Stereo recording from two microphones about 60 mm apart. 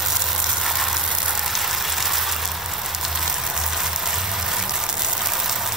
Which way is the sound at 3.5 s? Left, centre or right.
Centre.